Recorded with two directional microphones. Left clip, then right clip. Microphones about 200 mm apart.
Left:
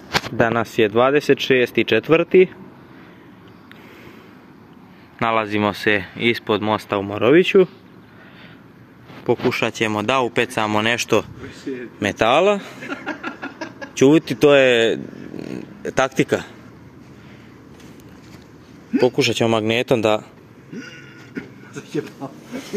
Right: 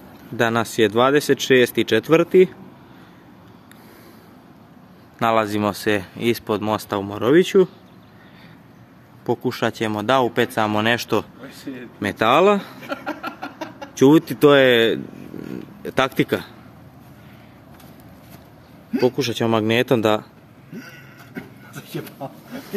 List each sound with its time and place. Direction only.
0.4 s speech: 5° right (ahead or behind)
5.2 s speech: 5° right (ahead or behind)
9.2 s speech: 5° right (ahead or behind)
12.9 s a sound: 30° right (ahead or behind)
13.9 s speech: centre (ahead or behind)
18.9 s speech: centre (ahead or behind)